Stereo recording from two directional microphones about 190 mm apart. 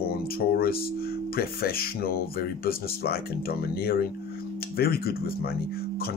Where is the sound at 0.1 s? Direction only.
55° left (ahead or behind).